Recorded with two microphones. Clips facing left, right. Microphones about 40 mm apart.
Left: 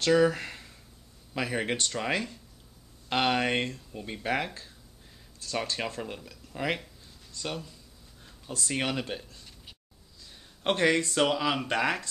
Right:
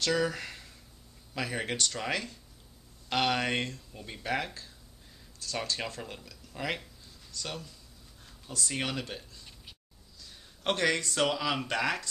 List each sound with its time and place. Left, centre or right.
0.1 s speech: centre
10.6 s speech: centre